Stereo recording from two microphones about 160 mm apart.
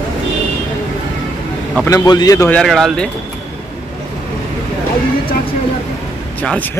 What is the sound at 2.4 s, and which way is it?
Speech, 5° left (ahead or behind).